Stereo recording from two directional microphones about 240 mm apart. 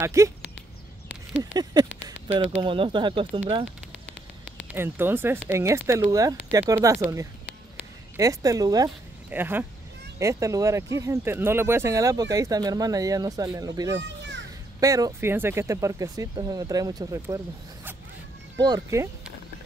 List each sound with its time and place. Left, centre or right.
0.0 s speech: centre
1.6 s speech: centre
4.7 s speech: centre
8.2 s speech: centre
14.0 s children playing: right
14.8 s speech: centre
18.6 s speech: centre